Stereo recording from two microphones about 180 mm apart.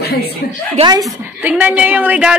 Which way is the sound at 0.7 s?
25° right (ahead or behind).